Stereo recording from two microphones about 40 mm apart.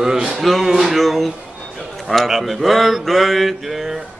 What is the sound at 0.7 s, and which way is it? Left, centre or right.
Speech, centre.